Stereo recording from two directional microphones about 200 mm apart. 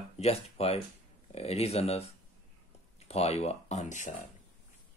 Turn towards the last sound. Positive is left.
turn(degrees=35)  # may be behind; listen again after turning